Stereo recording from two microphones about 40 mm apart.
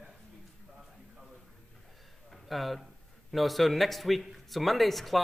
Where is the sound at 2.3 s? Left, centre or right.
Centre.